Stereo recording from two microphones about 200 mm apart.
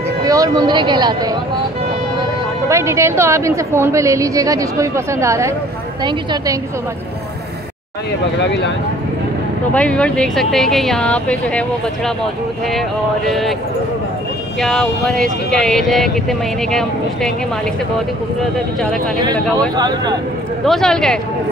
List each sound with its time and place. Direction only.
0.2 s speech: 20° right (ahead or behind)
2.7 s a woman's voice: 15° right (ahead or behind)
8.5 s speech: 60° left (ahead or behind)
9.8 s speech: 5° left (ahead or behind)
14.6 s speech: centre (ahead or behind)
19.7 s speech: 20° right (ahead or behind)
20.6 s speech: centre (ahead or behind)